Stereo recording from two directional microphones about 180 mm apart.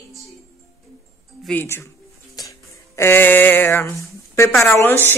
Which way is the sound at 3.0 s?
10° left (ahead or behind).